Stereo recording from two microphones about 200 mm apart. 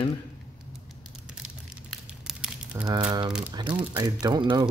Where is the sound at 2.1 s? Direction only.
5° right (ahead or behind).